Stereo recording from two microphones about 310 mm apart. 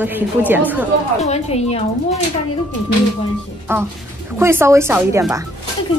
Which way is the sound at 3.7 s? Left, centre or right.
Centre.